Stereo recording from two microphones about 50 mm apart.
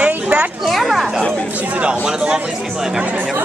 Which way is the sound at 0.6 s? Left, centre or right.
Centre.